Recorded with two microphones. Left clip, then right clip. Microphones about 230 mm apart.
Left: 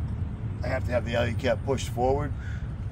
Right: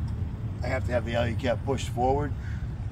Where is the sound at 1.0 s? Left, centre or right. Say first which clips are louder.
Left 1 dB; centre.